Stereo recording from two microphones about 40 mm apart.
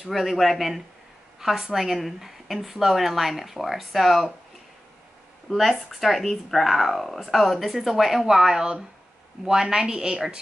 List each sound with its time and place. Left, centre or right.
0.0 s a woman's voice: centre
5.5 s a woman's voice: centre